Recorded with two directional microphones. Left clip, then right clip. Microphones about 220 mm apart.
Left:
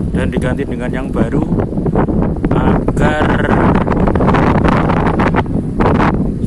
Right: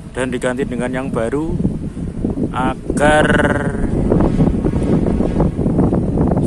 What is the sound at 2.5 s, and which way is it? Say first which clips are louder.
Speech: left 6 dB; 5° right (ahead or behind).